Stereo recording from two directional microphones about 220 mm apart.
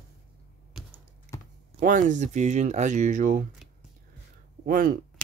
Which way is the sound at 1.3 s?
15° left (ahead or behind).